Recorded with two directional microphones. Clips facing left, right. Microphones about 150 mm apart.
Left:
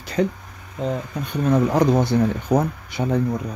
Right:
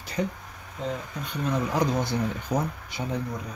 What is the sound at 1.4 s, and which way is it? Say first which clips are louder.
Speech: left 8 dB; 60° left (ahead or behind).